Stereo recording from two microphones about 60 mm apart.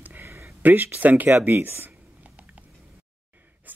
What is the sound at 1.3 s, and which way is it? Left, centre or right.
Speech, right.